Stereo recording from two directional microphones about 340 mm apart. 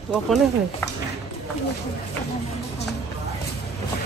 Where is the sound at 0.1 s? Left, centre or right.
Centre.